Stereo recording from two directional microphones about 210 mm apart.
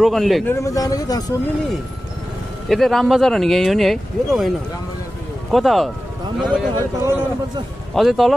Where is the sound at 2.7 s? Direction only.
Centre (ahead or behind).